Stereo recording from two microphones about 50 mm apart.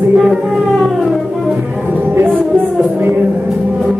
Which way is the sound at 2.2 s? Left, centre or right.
Centre.